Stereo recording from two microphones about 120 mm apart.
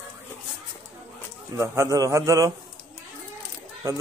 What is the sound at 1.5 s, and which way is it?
A man's voice, 25° right (ahead or behind).